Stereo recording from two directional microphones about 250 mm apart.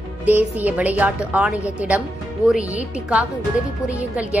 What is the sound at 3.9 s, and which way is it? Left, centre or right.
Speech, centre.